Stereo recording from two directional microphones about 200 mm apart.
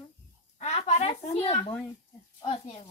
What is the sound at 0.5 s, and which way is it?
Speech, 35° left (ahead or behind).